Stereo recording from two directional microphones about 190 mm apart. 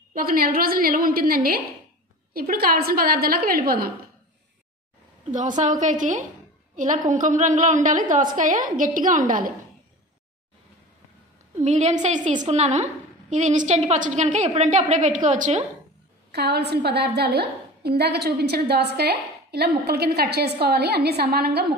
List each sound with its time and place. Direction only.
0.1 s a woman's voice: 50° right (ahead or behind)
5.3 s a woman's voice: 40° right (ahead or behind)
11.6 s a woman's voice: 35° right (ahead or behind)
16.3 s a woman's voice: 60° right (ahead or behind)